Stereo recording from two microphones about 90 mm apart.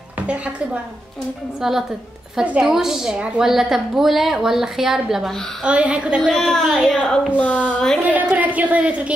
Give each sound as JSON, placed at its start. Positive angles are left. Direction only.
{"t": 1.6, "sound": "a woman's voice", "side_deg": -5}
{"t": 6.3, "sound": "a woman's voice", "side_deg": 5}
{"t": 7.3, "sound": "a woman's voice", "side_deg": 15}
{"t": 8.0, "sound": "a woman's voice", "side_deg": -15}